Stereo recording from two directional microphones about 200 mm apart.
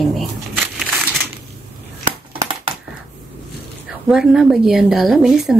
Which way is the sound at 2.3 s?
25° right (ahead or behind).